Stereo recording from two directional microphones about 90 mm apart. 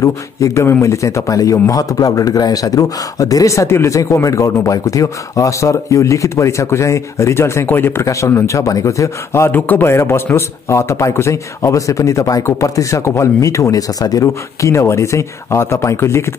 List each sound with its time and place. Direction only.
0.0 s a man's voice: 35° left (ahead or behind)
9.5 s a man's voice: 20° left (ahead or behind)